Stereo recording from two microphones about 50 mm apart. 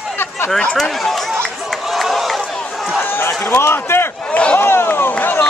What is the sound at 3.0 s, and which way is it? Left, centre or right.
A man's voice, left.